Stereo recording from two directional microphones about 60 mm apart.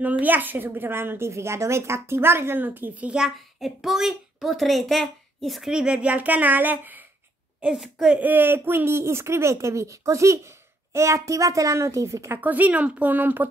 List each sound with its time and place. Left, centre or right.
0.0 s a woman's voice: right
3.2 s a child's voice: centre
5.7 s speech: centre; by 7.1 s right
7.6 s a woman's voice: centre
8.2 s speech: right
12.4 s speech: right